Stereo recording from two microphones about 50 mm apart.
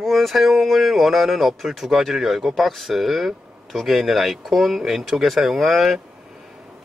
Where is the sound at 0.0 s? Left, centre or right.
Centre.